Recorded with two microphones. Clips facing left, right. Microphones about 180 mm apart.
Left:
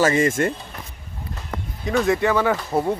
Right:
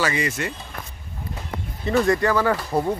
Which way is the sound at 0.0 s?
45° left (ahead or behind).